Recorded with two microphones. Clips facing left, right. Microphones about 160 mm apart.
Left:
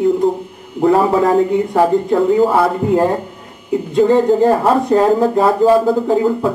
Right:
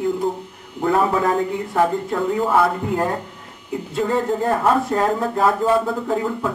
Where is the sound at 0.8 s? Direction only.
30° left (ahead or behind).